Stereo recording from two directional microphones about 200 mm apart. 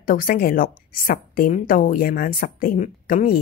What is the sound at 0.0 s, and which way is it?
A woman's voice, 45° left (ahead or behind).